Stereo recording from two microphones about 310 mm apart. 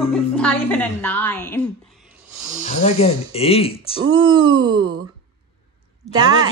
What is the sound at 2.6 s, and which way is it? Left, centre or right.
Speech, left.